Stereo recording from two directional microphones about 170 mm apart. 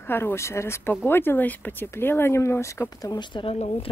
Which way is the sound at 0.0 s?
15° left (ahead or behind).